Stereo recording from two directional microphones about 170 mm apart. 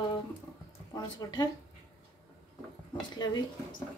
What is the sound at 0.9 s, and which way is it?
Speech, 25° left (ahead or behind).